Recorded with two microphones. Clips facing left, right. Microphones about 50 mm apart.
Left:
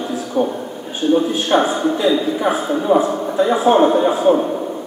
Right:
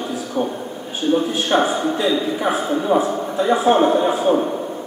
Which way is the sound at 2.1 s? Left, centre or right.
Centre.